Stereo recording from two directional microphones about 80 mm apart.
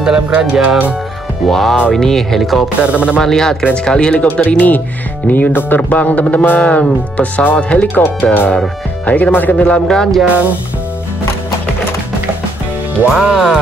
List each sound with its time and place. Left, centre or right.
0.0 s speech: centre
1.4 s speech: centre
2.8 s speech: centre
3.2 s speech: centre
9.8 s speech: centre
13.1 s speech: centre